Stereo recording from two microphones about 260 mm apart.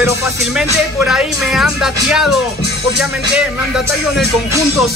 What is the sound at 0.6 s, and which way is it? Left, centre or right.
Speech, centre.